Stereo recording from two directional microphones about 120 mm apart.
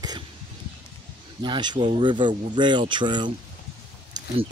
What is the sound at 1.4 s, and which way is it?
Speech, 40° right (ahead or behind).